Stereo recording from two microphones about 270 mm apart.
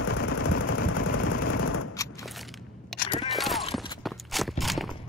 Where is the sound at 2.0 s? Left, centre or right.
Centre.